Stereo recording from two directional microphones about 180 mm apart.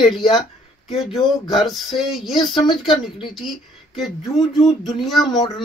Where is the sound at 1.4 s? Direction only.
Centre (ahead or behind).